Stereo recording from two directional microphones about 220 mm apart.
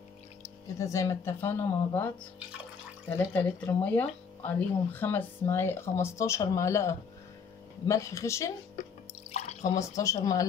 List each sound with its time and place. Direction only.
0.7 s speech: 15° left (ahead or behind)
3.1 s speech: 10° left (ahead or behind)
9.3 s drip: 30° left (ahead or behind)
9.8 s speech: 15° left (ahead or behind)